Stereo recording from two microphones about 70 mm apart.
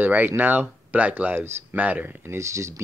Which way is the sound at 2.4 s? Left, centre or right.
Right.